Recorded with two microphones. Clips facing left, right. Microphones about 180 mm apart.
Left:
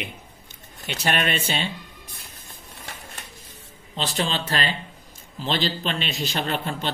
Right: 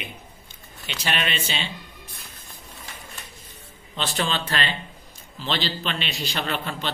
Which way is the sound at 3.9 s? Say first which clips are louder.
Even; 35° left (ahead or behind).